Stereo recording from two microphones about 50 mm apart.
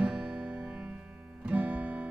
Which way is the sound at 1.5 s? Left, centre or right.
Right.